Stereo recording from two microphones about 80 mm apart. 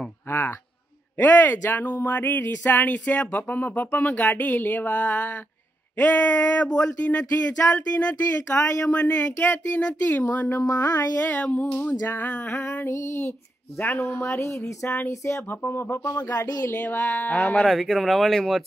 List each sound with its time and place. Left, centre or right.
0.3 s speech: left
16.2 s a sound: left
16.6 s speech: left
17.6 s speech: centre